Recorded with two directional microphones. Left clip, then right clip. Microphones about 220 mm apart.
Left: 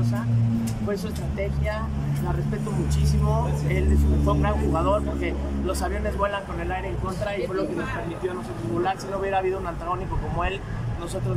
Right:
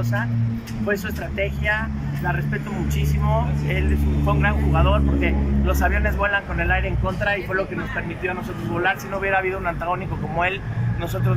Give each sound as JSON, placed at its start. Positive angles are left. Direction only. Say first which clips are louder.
{"t": 4.3, "sound": "speech", "louder": "right 3 dB", "side_deg": 15}
{"t": 8.8, "sound": "speech", "louder": "right 6 dB", "side_deg": 15}